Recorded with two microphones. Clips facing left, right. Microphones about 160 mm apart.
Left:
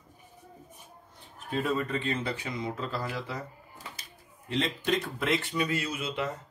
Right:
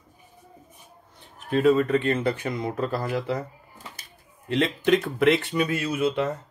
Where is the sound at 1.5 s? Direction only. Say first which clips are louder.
Right 10 dB; 75° right (ahead or behind).